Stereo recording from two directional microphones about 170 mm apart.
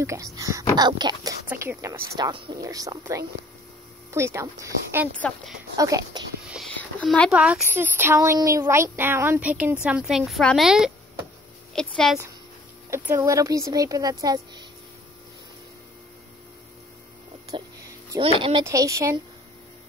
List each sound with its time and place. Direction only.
0.0 s speech: 20° right (ahead or behind)
1.5 s speech: 15° right (ahead or behind)
6.8 s a woman's voice: 5° left (ahead or behind)
12.9 s speech: 15° right (ahead or behind)
17.5 s a sound: 20° right (ahead or behind)
18.4 s speech: 25° right (ahead or behind)